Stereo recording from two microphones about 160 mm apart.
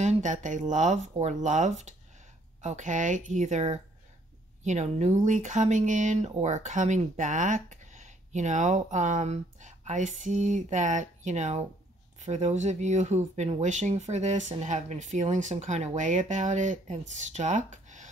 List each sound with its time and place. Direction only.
0.0 s speech: 50° right (ahead or behind)